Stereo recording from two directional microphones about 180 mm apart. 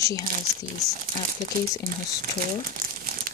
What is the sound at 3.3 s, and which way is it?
Crumpling, 50° right (ahead or behind).